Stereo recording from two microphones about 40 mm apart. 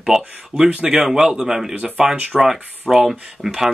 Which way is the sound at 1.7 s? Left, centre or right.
Right.